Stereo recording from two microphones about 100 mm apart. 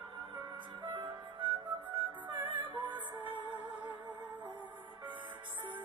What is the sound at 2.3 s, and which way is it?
Music, 50° right (ahead or behind).